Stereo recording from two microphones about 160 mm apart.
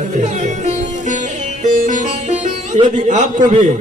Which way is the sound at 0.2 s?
50° right (ahead or behind).